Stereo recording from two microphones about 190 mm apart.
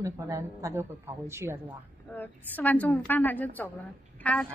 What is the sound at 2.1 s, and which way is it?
A woman's voice, 10° left (ahead or behind).